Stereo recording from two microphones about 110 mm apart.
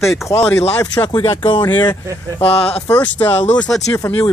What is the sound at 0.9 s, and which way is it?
Speech, 45° left (ahead or behind).